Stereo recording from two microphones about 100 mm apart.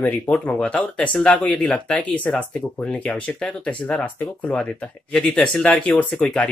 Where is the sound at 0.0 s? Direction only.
10° left (ahead or behind).